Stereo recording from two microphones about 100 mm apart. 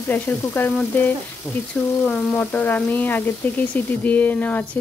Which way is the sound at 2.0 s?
10° left (ahead or behind).